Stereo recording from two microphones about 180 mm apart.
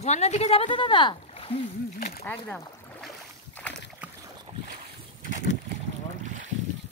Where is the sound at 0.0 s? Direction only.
40° left (ahead or behind).